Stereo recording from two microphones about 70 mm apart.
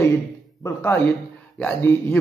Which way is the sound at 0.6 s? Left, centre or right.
Left.